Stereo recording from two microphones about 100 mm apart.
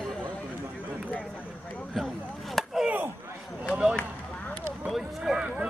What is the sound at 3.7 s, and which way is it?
Speech, 10° right (ahead or behind).